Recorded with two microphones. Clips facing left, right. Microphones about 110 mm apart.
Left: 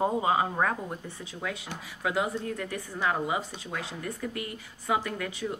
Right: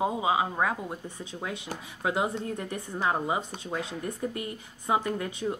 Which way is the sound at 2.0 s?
30° right (ahead or behind).